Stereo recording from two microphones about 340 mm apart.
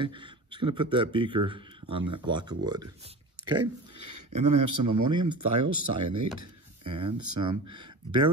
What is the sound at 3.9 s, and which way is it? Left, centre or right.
Speech, right.